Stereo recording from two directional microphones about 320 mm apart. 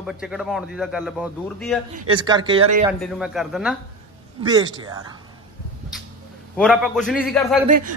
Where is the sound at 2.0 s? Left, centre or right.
Centre.